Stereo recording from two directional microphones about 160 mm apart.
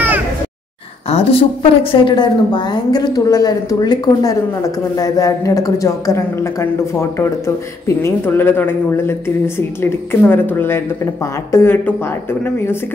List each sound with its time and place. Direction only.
1.1 s a woman's voice: 35° left (ahead or behind); by 12.7 s 15° left (ahead or behind)